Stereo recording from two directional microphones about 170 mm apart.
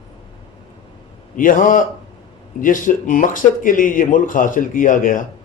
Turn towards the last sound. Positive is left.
turn(degrees=50)  # may be behind; listen again after turning